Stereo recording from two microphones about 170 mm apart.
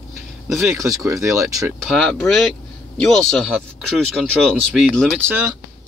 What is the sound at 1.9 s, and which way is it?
Speech, 5° left (ahead or behind).